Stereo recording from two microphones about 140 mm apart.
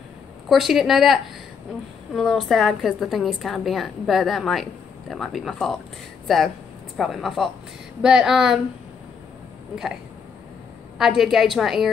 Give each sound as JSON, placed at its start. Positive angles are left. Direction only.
{"t": 0.5, "sound": "a woman's voice", "side_deg": 0}
{"t": 11.0, "sound": "a woman's voice", "side_deg": 0}